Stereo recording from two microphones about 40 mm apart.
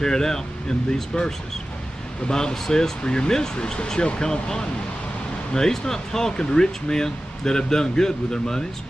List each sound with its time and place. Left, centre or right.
0.0 s speech: centre
2.2 s speech: centre